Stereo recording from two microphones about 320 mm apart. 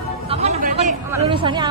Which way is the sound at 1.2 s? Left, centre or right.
Centre.